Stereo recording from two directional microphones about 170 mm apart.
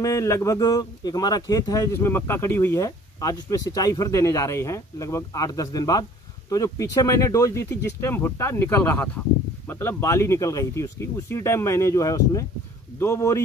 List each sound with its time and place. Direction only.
0.0 s speech: 20° left (ahead or behind)